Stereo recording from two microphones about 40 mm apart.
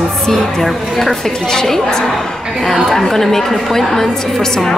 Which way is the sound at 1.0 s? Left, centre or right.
Centre.